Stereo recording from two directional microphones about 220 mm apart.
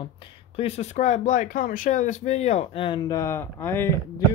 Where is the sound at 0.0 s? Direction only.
25° left (ahead or behind).